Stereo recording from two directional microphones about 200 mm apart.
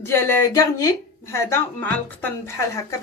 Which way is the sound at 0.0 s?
10° left (ahead or behind).